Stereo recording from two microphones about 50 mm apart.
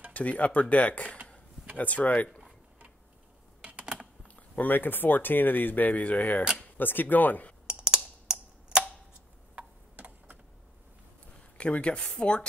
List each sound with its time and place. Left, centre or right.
0.1 s speech: left
3.6 s typing: right
4.4 s speech: left
7.6 s typing: centre
9.6 s tick-tock: right
11.5 s speech: left